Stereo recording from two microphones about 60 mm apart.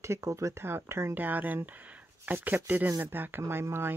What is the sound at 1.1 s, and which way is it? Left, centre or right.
Speech, right.